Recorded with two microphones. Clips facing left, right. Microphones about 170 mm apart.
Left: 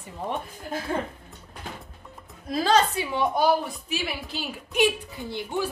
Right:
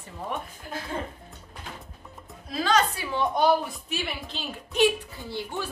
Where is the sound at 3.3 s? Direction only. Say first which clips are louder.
Right 2 dB; 5° left (ahead or behind).